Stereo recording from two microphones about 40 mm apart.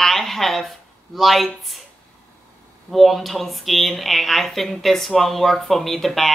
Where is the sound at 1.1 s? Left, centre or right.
Centre.